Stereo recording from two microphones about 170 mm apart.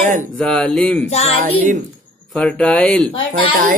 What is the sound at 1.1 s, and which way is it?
Music, 40° left (ahead or behind).